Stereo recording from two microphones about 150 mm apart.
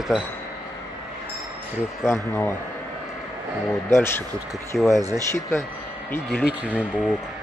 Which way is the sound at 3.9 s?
15° left (ahead or behind).